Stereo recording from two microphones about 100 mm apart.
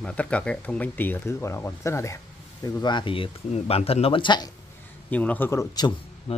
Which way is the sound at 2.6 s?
45° left (ahead or behind).